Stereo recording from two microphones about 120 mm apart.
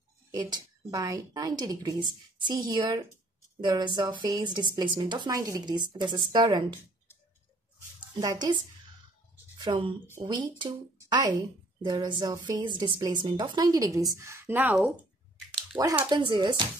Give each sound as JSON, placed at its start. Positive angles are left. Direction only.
{"t": 0.3, "sound": "a woman's voice", "side_deg": -30}
{"t": 8.1, "sound": "a woman's voice", "side_deg": -35}
{"t": 15.7, "sound": "speech", "side_deg": -30}
{"t": 16.1, "sound": "a woman's voice", "side_deg": -40}